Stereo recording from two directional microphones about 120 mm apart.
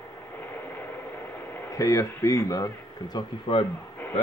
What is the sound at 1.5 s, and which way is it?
Speech, 30° left (ahead or behind).